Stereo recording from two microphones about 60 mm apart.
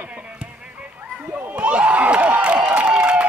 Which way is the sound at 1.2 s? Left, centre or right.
Right.